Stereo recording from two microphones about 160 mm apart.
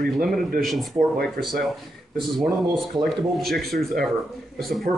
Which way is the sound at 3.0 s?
Centre (ahead or behind).